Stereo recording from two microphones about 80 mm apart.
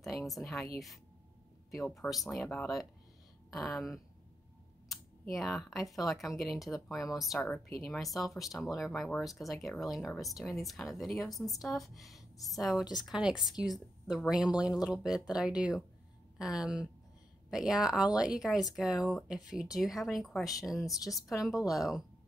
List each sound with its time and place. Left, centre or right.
0.0 s speech: centre
3.5 s speech: centre
20.8 s a woman's voice: left
21.4 s speech: centre